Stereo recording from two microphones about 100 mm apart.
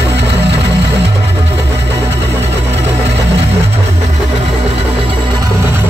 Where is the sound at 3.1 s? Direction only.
90° right.